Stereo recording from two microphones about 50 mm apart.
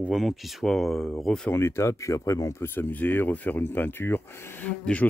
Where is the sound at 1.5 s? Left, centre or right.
Left.